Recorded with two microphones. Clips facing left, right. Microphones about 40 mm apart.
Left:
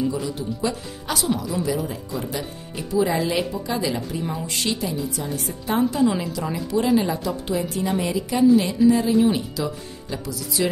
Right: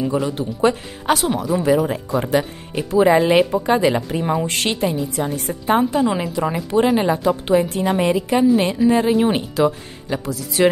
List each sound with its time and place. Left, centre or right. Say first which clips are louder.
0.1 s a woman's voice: right 6 dB; right